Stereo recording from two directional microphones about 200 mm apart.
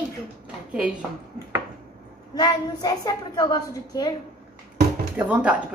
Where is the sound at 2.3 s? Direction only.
20° left (ahead or behind).